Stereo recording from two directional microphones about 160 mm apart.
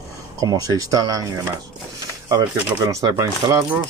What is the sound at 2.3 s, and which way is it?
Speech, 20° right (ahead or behind).